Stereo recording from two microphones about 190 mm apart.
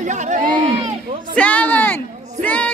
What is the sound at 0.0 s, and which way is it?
Run, 40° right (ahead or behind).